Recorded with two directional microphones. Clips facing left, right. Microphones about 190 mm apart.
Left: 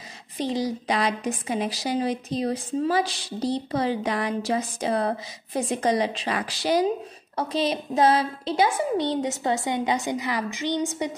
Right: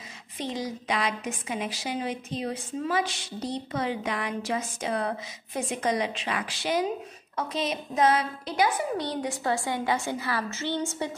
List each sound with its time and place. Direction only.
0.4 s a woman's voice: 35° left (ahead or behind); by 10.9 s 15° left (ahead or behind)